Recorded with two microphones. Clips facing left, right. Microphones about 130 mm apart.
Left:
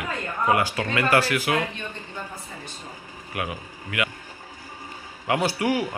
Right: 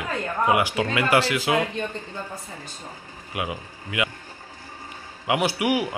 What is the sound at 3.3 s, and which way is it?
Speech, 20° right (ahead or behind).